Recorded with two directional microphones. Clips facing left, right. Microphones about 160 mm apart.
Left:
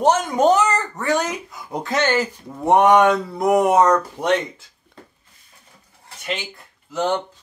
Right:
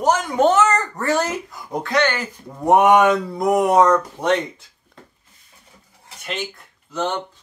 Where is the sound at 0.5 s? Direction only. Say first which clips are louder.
Even; 15° left (ahead or behind).